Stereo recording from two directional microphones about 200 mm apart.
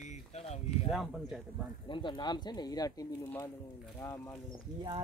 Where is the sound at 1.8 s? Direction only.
25° left (ahead or behind).